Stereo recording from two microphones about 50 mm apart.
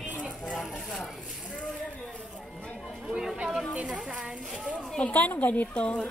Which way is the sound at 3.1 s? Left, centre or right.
Centre.